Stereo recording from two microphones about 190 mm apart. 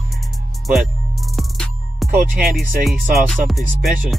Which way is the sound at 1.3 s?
Centre (ahead or behind).